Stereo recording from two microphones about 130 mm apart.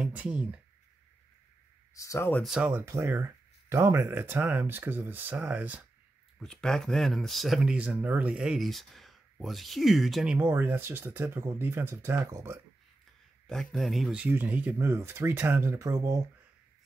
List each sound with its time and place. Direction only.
0.0 s speech: 10° right (ahead or behind)
2.0 s speech: 20° left (ahead or behind)
2.4 s speech: 5° right (ahead or behind)
2.8 s speech: 20° right (ahead or behind)
6.4 s speech: 5° left (ahead or behind); by 12.5 s 20° right (ahead or behind)
13.5 s speech: 5° left (ahead or behind); by 16.2 s 25° right (ahead or behind)